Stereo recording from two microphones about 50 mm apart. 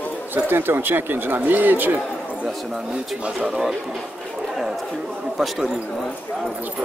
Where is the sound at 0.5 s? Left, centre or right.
Right.